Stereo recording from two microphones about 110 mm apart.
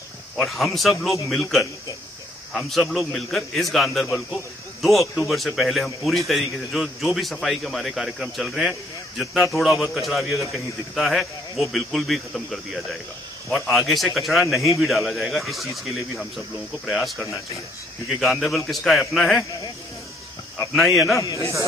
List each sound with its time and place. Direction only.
0.4 s a man's voice: centre (ahead or behind)
5.1 s a man's voice: centre (ahead or behind)
20.7 s a man's voice: centre (ahead or behind)
21.2 s speech: 30° left (ahead or behind)